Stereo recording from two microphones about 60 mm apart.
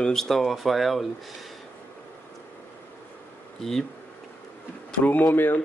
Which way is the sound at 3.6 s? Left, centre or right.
Centre.